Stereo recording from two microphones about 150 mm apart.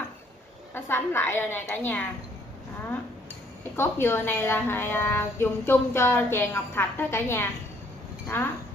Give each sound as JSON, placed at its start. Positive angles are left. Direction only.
{"t": 0.7, "sound": "a woman's voice", "side_deg": 15}
{"t": 3.7, "sound": "a woman's voice", "side_deg": 15}